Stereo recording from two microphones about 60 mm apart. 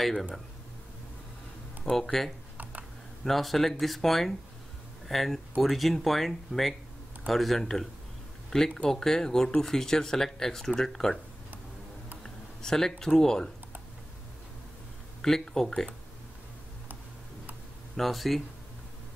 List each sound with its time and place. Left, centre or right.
0.0 s speech: centre
1.9 s speech: centre
2.5 s computer keyboard: right
3.3 s speech: centre
12.2 s a sound: centre
13.2 s speech: centre
15.2 s speech: centre
17.9 s speech: centre